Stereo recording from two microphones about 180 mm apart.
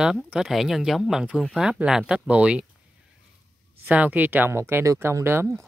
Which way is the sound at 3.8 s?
10° right (ahead or behind).